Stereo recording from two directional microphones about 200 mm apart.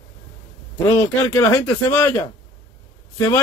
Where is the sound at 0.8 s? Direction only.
15° left (ahead or behind).